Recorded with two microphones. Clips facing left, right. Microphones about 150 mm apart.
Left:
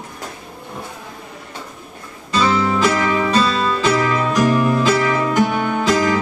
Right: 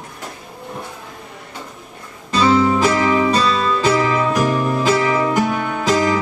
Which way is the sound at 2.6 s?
20° right (ahead or behind).